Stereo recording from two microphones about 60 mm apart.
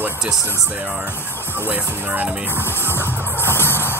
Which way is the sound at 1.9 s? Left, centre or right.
Right.